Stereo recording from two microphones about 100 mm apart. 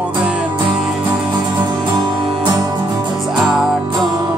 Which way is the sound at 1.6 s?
50° right (ahead or behind).